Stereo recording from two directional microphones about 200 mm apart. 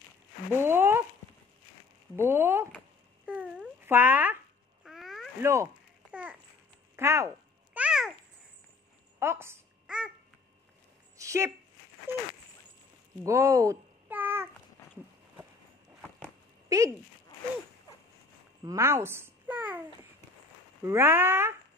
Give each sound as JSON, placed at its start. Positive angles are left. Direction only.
{"t": 0.6, "sound": "speech", "side_deg": -10}
{"t": 2.1, "sound": "speech", "side_deg": -10}
{"t": 3.3, "sound": "a sound", "side_deg": -5}
{"t": 5.4, "sound": "speech", "side_deg": -15}
{"t": 7.0, "sound": "speech", "side_deg": -15}
{"t": 7.7, "sound": "babbling", "side_deg": -5}
{"t": 9.2, "sound": "babbling", "side_deg": -10}
{"t": 11.1, "sound": "a sound", "side_deg": -15}
{"t": 13.2, "sound": "babbling", "side_deg": -15}
{"t": 16.2, "sound": "a sound", "side_deg": -15}
{"t": 18.6, "sound": "babbling", "side_deg": -15}
{"t": 20.8, "sound": "speech", "side_deg": -10}